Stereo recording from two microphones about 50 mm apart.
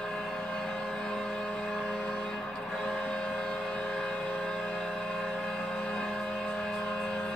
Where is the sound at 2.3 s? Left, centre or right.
Centre.